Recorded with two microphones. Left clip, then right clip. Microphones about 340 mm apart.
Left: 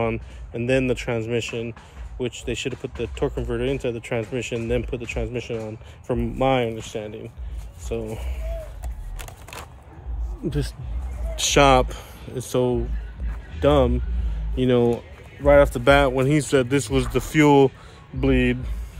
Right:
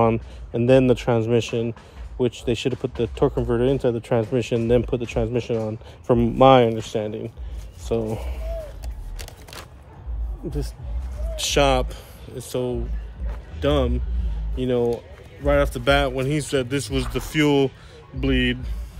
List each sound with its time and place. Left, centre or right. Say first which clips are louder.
0.0 s speech: right 5 dB; right
10.4 s speech: left 3 dB; left